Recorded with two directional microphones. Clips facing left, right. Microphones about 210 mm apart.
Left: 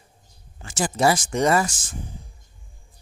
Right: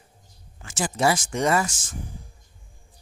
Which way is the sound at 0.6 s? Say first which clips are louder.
Left 2 dB; 35° left (ahead or behind).